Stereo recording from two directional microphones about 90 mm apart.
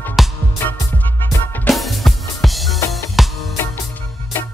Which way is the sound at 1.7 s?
Centre (ahead or behind).